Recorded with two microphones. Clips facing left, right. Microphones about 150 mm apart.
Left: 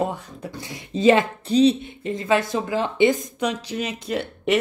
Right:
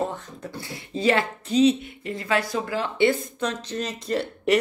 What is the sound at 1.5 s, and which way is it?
Speech, 30° left (ahead or behind).